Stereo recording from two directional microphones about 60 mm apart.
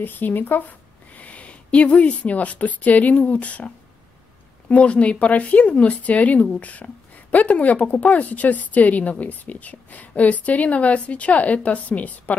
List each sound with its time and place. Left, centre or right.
0.0 s a woman's voice: left